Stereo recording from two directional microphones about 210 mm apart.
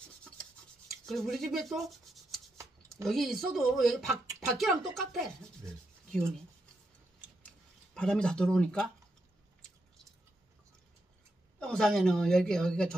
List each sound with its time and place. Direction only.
1.0 s rub: centre (ahead or behind)
3.1 s a woman's voice: centre (ahead or behind)
7.4 s a sound: 5° left (ahead or behind)
11.6 s a woman's voice: centre (ahead or behind)